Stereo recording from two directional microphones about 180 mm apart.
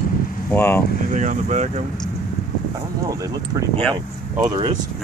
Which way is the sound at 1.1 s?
40° right (ahead or behind).